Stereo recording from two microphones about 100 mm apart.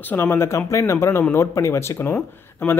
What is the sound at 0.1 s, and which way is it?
Speech, 25° left (ahead or behind).